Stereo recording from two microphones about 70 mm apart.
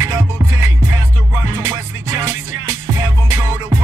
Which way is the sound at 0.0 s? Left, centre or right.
Right.